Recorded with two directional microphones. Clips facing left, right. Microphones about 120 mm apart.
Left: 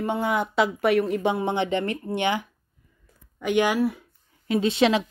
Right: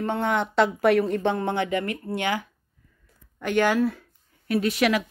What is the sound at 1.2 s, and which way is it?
Speech, 15° left (ahead or behind).